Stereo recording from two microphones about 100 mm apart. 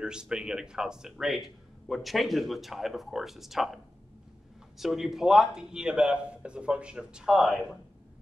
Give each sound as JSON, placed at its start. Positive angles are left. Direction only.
{"t": 0.0, "sound": "a man's voice", "side_deg": -10}